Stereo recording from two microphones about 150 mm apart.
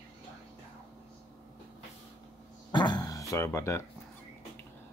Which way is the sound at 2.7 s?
30° left (ahead or behind).